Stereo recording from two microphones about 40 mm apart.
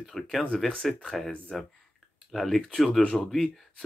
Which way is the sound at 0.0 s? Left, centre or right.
Centre.